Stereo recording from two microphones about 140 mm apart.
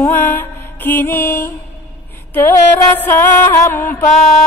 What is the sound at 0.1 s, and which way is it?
Music, 15° left (ahead or behind).